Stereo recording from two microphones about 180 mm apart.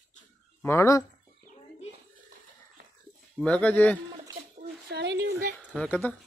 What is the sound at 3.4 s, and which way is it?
Speech, 5° left (ahead or behind).